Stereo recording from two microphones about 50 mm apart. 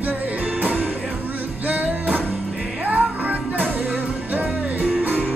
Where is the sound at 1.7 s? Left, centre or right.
Right.